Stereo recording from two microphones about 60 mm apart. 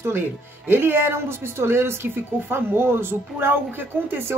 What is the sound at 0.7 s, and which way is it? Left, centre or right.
Speech, right.